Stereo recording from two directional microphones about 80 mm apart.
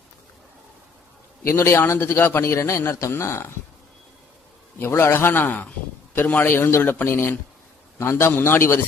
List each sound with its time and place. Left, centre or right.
1.4 s a man's voice: left
4.7 s a man's voice: left
6.4 s a man's voice: left